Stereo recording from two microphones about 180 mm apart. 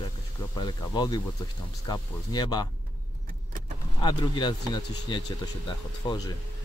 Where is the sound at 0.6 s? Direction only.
25° left (ahead or behind).